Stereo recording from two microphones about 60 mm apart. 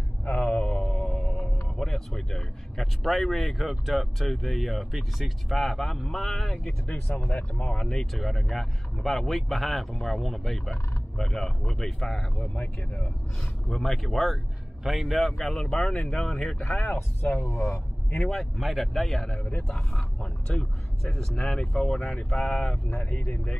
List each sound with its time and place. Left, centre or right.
0.2 s a sound: left
1.8 s speech: centre
7.2 s speech: left
7.7 s speech: centre
12.4 s speech: centre
13.7 s speech: centre
18.1 s speech: centre